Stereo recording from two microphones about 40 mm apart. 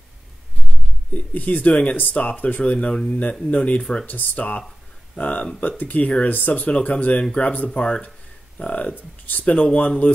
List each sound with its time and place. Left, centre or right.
1.1 s speech: left
1.7 s speech: left
2.6 s speech: left